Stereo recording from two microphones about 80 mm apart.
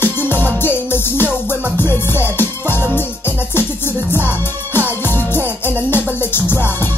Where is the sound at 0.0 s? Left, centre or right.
Left.